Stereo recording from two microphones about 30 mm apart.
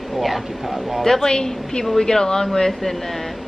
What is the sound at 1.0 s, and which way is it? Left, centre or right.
Speech, centre.